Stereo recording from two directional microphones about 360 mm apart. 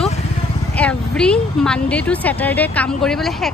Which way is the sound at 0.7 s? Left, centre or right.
Centre.